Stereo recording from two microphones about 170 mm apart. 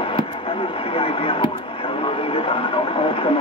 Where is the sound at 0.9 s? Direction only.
30° left (ahead or behind).